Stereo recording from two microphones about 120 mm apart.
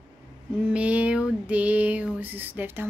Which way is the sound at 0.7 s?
10° right (ahead or behind).